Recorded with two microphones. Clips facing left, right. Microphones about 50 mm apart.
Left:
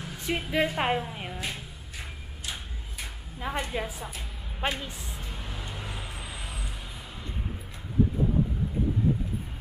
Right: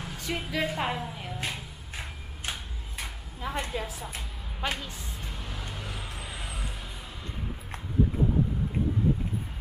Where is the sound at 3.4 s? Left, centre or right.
Centre.